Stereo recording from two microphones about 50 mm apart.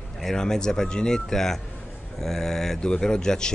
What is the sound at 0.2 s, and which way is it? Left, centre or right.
Speech, centre.